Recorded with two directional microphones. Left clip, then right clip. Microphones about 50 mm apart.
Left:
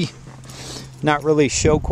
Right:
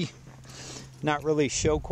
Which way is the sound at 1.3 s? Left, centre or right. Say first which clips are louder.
Left 8 dB; centre.